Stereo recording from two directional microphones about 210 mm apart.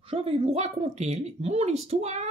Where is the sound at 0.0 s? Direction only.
25° right (ahead or behind).